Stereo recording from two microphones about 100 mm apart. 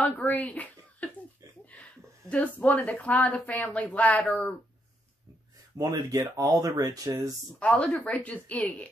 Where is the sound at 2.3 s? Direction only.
15° left (ahead or behind).